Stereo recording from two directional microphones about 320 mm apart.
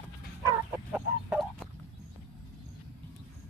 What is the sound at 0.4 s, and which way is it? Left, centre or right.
Bow-wow, centre.